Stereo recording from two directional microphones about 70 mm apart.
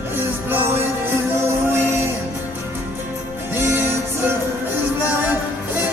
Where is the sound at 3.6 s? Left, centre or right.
Right.